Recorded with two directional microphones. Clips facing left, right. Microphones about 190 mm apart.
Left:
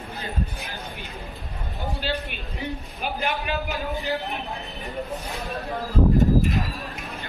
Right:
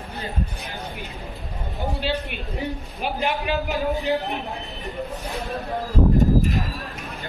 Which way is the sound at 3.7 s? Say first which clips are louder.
Right 5 dB; 20° right (ahead or behind).